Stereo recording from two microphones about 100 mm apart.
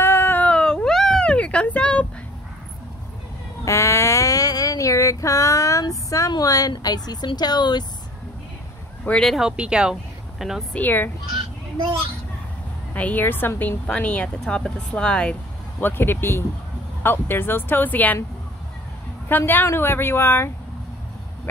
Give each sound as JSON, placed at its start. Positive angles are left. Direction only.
{"t": 0.0, "sound": "a sound", "side_deg": 20}
{"t": 3.6, "sound": "a sound", "side_deg": 30}
{"t": 6.7, "sound": "speech", "side_deg": 40}
{"t": 9.2, "sound": "speech", "side_deg": 0}
{"t": 10.7, "sound": "speech", "side_deg": 20}
{"t": 12.9, "sound": "a woman's voice", "side_deg": 15}
{"t": 15.8, "sound": "speech", "side_deg": 20}
{"t": 19.2, "sound": "speech", "side_deg": 20}